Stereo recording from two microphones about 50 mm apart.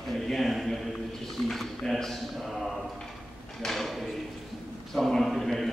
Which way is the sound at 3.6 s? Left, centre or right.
Centre.